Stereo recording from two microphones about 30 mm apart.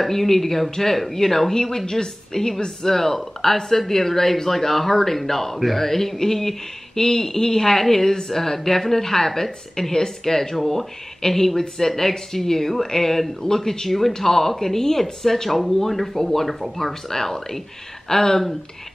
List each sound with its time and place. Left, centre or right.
0.0 s a woman's voice: centre